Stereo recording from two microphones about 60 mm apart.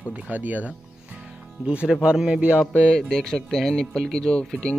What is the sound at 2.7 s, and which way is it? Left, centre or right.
Speech, centre.